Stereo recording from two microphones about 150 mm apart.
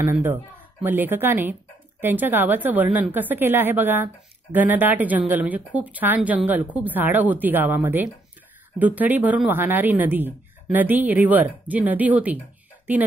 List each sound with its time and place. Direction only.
0.0 s a woman's voice: 15° right (ahead or behind)